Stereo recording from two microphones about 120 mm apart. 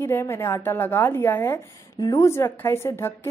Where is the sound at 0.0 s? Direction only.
20° left (ahead or behind).